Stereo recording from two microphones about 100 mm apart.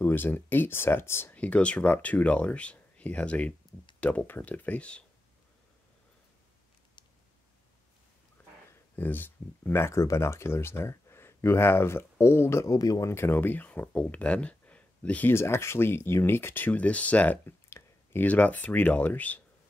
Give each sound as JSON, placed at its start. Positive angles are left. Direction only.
{"t": 0.0, "sound": "speech", "side_deg": 20}
{"t": 1.3, "sound": "speech", "side_deg": 10}
{"t": 8.4, "sound": "a sound", "side_deg": 20}
{"t": 8.9, "sound": "speech", "side_deg": 20}